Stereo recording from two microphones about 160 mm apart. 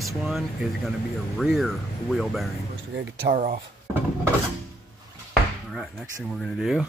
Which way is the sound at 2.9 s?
85° right.